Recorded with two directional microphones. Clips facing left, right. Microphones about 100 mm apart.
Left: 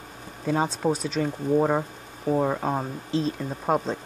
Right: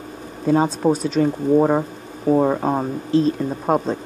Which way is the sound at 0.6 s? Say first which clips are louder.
Right 5 dB; 10° right (ahead or behind).